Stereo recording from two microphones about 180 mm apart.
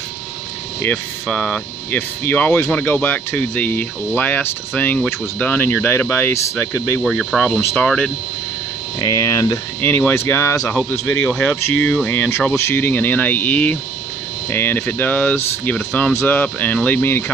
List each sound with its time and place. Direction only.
0.8 s speech: 10° left (ahead or behind)
7.0 s speech: centre (ahead or behind)
9.0 s speech: 20° left (ahead or behind)